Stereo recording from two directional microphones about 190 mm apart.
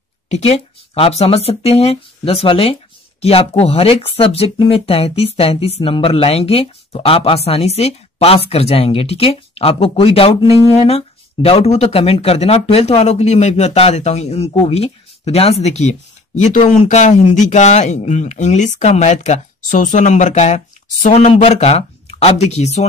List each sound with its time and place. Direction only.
0.3 s speech: 30° left (ahead or behind)